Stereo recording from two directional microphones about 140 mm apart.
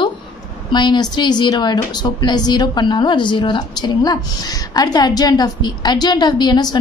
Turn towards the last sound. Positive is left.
turn(degrees=30)  # may be behind; listen again after turning